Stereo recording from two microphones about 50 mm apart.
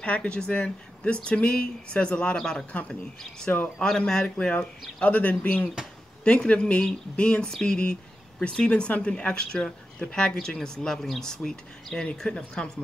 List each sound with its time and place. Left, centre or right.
0.0 s speech: left
3.5 s speech: left
3.8 s speech: centre